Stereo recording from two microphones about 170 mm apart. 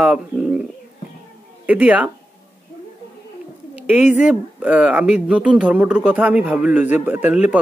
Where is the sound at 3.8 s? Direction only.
10° right (ahead or behind).